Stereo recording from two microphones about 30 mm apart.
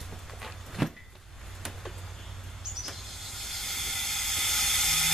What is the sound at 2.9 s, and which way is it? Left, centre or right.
Steam, centre.